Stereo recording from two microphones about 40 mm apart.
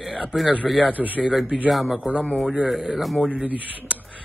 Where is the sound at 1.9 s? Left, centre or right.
Right.